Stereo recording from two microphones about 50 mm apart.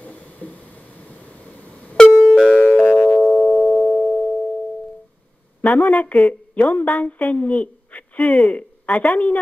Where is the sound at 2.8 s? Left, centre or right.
Left.